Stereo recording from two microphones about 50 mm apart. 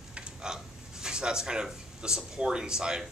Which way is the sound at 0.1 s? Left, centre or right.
Centre.